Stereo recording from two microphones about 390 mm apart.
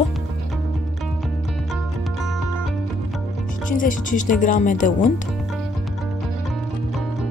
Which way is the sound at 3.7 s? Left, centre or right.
Centre.